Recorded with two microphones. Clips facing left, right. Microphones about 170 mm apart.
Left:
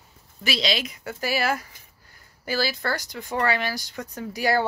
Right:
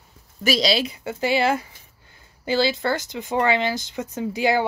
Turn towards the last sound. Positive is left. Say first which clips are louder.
# right 3 dB
turn(degrees=-20)  # may be behind; listen again after turning